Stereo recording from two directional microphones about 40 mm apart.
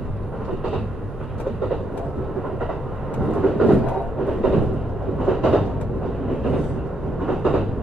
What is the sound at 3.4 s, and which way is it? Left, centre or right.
Vehicle, centre.